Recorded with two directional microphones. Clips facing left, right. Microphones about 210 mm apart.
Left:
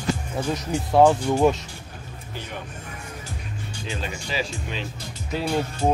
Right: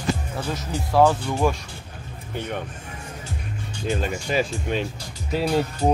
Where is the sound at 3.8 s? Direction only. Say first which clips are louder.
Right 7 dB; 50° right (ahead or behind).